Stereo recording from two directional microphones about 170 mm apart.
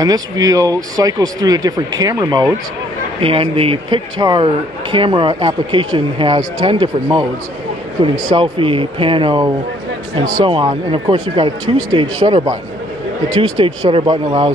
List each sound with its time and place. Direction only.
0.0 s speech: 20° right (ahead or behind)
3.2 s speech: 35° right (ahead or behind)